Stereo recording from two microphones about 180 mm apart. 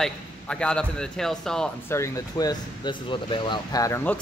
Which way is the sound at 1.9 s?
20° left (ahead or behind).